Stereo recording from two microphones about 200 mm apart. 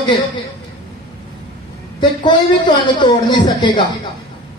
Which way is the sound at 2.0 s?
25° left (ahead or behind).